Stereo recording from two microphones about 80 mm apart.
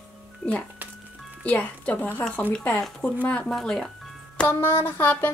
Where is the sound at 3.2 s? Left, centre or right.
Centre.